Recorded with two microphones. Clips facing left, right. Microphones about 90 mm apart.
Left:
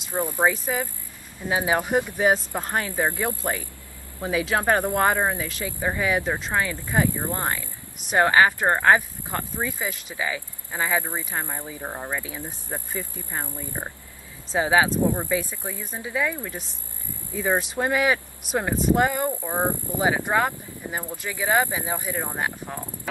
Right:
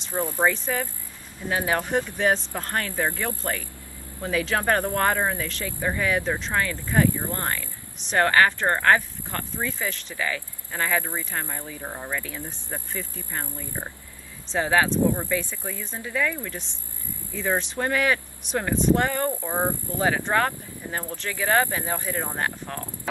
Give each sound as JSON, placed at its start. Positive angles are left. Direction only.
{"t": 0.1, "sound": "speech", "side_deg": 15}